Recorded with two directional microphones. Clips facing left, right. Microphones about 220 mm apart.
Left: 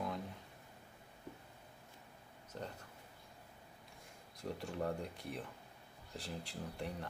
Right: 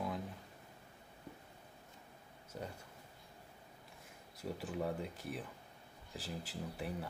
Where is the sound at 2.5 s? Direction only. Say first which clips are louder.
Right 1 dB; 10° right (ahead or behind).